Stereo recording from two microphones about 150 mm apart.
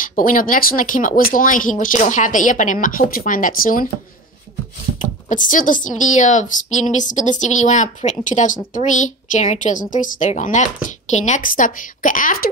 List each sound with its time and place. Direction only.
0.0 s speech: 65° left (ahead or behind)
4.9 s speech: 60° left (ahead or behind)